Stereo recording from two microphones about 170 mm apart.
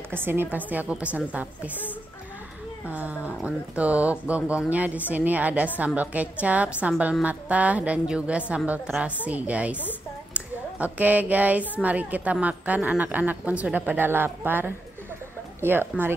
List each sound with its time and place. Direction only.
0.1 s a woman's voice: 10° right (ahead or behind)
2.9 s a woman's voice: 10° right (ahead or behind)